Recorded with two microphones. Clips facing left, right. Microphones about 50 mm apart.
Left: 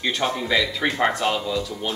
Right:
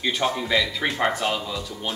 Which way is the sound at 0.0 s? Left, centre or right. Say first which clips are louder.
Even; centre.